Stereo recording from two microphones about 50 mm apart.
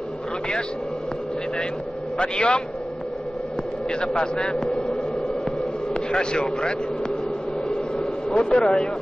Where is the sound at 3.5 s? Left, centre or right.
Centre.